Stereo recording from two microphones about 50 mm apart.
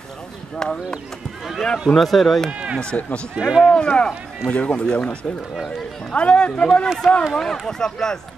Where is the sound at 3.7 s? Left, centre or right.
Centre.